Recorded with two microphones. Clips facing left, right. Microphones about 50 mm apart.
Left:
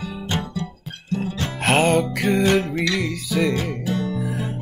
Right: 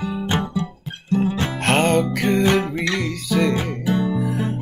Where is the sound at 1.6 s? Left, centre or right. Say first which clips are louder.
Even; centre.